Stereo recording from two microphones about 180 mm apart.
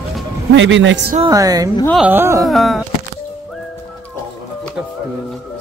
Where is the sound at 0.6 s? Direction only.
90° right.